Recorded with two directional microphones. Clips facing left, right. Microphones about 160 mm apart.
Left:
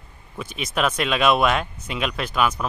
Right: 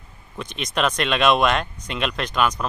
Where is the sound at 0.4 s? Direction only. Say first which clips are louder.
Even; 5° left (ahead or behind).